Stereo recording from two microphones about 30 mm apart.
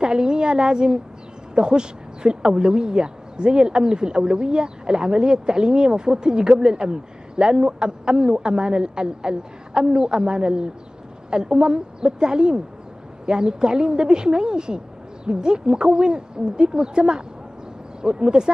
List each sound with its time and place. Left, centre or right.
0.0 s a woman's voice: right